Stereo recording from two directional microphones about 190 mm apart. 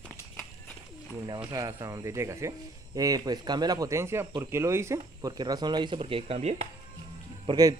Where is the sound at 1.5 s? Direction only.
20° right (ahead or behind); by 6.7 s 35° right (ahead or behind).